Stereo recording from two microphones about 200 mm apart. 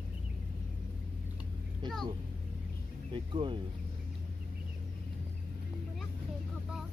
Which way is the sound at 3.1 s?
25° right (ahead or behind).